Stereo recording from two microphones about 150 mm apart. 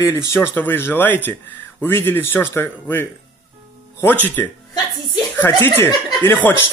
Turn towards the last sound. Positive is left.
turn(degrees=15)  # may be behind; listen again after turning